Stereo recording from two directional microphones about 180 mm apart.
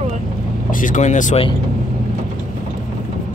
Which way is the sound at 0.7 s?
45° left (ahead or behind).